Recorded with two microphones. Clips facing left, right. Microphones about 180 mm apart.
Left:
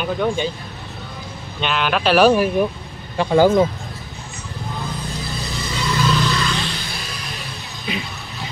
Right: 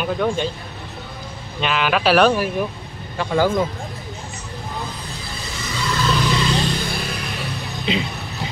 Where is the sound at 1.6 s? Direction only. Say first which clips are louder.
Right 1 dB; centre (ahead or behind).